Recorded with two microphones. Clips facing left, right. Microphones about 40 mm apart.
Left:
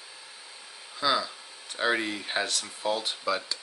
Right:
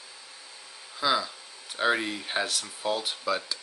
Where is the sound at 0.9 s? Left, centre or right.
Centre.